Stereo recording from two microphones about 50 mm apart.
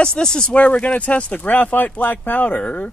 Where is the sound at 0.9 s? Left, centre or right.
Left.